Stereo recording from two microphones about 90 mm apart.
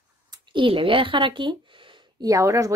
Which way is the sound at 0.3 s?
65° right (ahead or behind).